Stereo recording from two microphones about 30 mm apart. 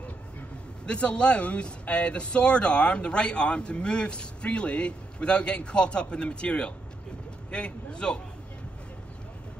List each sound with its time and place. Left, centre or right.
0.8 s speech: left